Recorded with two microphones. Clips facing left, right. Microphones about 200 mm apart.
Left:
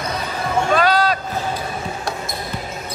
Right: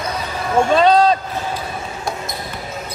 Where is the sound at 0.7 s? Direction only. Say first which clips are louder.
Right 5 dB; 25° right (ahead or behind).